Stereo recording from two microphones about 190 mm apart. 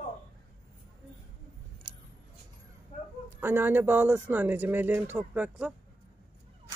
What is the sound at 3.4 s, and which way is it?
Speech, 10° right (ahead or behind).